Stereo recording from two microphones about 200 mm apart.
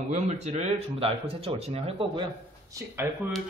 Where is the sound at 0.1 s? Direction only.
35° right (ahead or behind).